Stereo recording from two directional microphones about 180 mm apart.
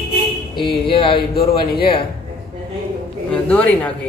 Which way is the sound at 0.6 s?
30° left (ahead or behind).